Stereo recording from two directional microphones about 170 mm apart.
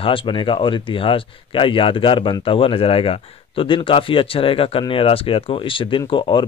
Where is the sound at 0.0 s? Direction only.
30° left (ahead or behind).